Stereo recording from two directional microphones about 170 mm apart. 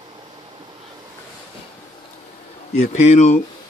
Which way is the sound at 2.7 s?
45° left (ahead or behind).